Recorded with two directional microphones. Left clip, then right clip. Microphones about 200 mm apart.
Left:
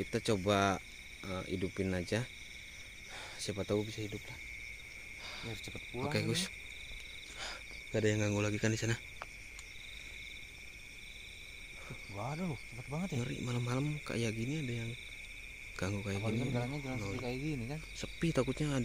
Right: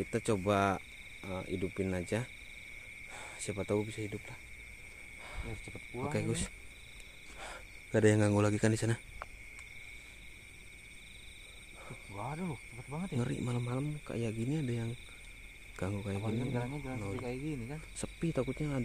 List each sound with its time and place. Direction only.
0.1 s speech: 5° right (ahead or behind)
5.3 s a sound: 5° right (ahead or behind)
5.7 s speech: 5° right (ahead or behind)
7.9 s a man's voice: 35° right (ahead or behind)
12.2 s speech: 25° left (ahead or behind)
13.6 s speech: 5° left (ahead or behind)
14.4 s a man's voice: 25° right (ahead or behind)
15.8 s speech: centre (ahead or behind)
16.2 s speech: 15° left (ahead or behind)
18.2 s speech: 10° left (ahead or behind)